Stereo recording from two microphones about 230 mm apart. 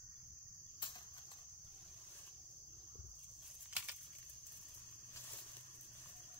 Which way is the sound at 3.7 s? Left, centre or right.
Centre.